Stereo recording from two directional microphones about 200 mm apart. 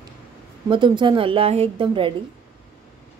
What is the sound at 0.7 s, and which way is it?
Speech, 25° right (ahead or behind).